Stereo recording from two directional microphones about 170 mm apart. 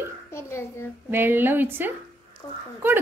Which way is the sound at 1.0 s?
10° right (ahead or behind).